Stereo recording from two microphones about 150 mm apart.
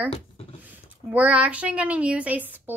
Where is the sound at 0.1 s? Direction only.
40° left (ahead or behind).